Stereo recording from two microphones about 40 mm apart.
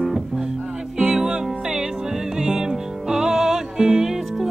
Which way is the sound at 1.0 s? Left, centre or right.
Right.